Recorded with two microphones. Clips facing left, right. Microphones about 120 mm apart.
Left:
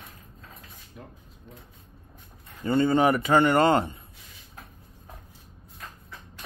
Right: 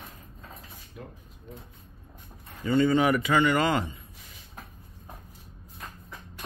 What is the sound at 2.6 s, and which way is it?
Speech, 45° left (ahead or behind).